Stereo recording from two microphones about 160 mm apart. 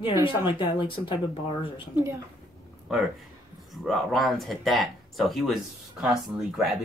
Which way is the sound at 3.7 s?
Centre (ahead or behind).